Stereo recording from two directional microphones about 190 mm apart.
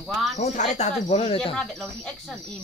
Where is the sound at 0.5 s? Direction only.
35° left (ahead or behind).